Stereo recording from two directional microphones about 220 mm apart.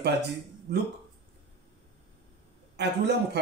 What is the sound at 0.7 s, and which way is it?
Speech, 50° right (ahead or behind).